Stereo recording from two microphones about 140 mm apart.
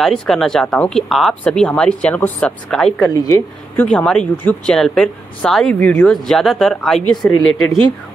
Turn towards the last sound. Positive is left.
turn(degrees=0)  # may be behind; listen again after turning